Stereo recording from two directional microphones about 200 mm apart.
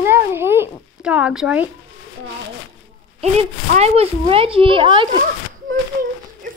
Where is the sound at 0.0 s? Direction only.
10° right (ahead or behind).